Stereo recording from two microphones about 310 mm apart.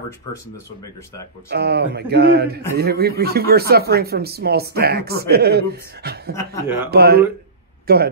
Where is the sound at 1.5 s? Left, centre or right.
Right.